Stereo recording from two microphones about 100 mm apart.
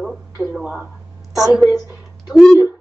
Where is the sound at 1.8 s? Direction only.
40° left (ahead or behind).